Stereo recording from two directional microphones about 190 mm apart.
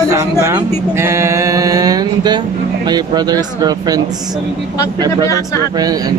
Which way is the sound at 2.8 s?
20° right (ahead or behind).